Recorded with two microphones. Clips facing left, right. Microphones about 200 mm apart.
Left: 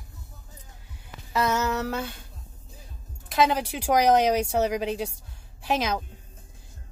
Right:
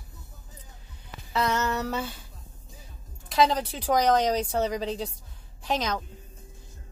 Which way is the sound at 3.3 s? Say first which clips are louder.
Even; 5° left (ahead or behind).